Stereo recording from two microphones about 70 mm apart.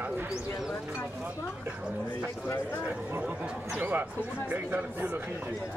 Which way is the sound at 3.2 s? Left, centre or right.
Centre.